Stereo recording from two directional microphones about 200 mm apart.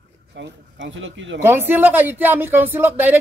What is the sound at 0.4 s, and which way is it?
Speech, 65° right (ahead or behind).